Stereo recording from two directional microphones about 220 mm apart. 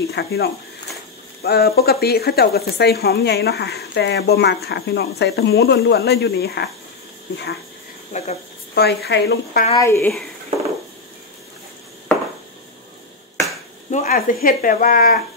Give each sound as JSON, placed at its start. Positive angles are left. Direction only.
{"t": 0.1, "sound": "speech", "side_deg": 45}
{"t": 8.1, "sound": "speech", "side_deg": 30}
{"t": 8.7, "sound": "speech", "side_deg": 45}
{"t": 9.8, "sound": "speech", "side_deg": 10}
{"t": 13.8, "sound": "speech", "side_deg": 35}